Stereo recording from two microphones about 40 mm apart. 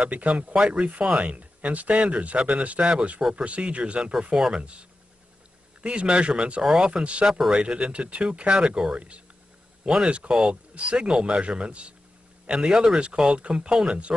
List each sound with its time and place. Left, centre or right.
0.0 s speech: right
3.2 s speech: centre
3.4 s speech: right
4.3 s speech: centre
5.8 s speech: right
6.6 s speech: centre
7.2 s speech: centre
7.5 s speech: right
8.6 s speech: centre
8.9 s speech: right